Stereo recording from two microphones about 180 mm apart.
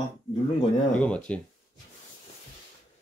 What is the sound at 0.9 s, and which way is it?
Speech, 5° left (ahead or behind).